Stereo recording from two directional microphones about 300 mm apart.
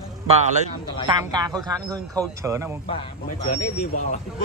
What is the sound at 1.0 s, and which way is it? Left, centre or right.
A man's voice, centre.